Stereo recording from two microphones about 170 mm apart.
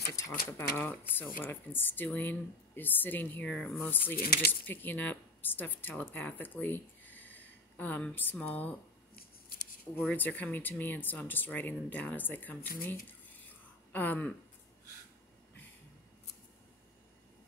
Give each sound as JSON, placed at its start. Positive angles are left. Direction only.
{"t": 0.1, "sound": "speech", "side_deg": 15}
{"t": 4.2, "sound": "speech", "side_deg": 65}
{"t": 4.5, "sound": "speech", "side_deg": 10}
{"t": 9.9, "sound": "speech", "side_deg": 10}
{"t": 12.8, "sound": "a sound", "side_deg": 10}